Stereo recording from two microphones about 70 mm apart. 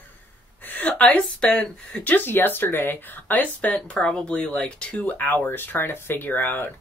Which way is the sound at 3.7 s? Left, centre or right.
Centre.